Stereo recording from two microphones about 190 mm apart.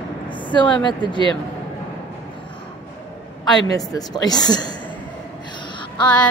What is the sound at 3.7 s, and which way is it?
A woman's voice, 20° left (ahead or behind).